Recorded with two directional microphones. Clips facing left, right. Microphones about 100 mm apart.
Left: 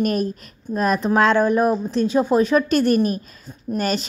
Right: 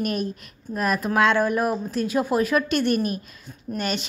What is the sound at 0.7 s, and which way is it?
Speech, 30° left (ahead or behind).